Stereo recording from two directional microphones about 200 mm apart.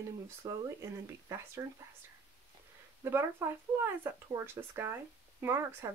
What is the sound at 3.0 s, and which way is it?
Speech, 10° right (ahead or behind).